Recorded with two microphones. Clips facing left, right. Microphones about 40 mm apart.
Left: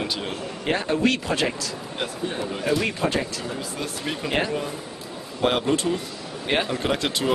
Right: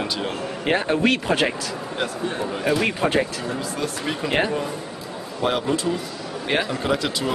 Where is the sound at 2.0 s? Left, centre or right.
Centre.